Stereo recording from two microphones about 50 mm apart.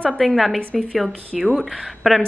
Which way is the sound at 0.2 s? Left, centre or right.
Centre.